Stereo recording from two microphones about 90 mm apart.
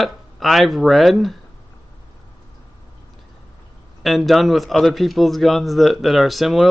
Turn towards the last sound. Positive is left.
turn(degrees=0)  # may be behind; listen again after turning